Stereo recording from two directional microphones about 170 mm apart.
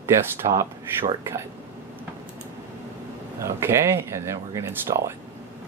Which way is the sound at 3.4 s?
15° right (ahead or behind).